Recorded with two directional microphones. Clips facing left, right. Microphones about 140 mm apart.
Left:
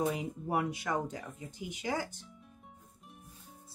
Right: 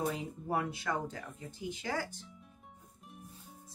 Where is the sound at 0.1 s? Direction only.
15° left (ahead or behind).